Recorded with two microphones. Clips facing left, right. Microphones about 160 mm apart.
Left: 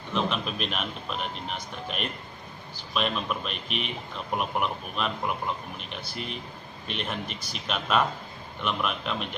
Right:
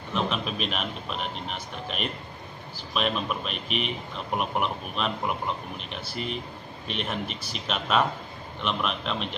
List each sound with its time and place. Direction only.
0.1 s speech: centre (ahead or behind)
2.9 s speech: centre (ahead or behind)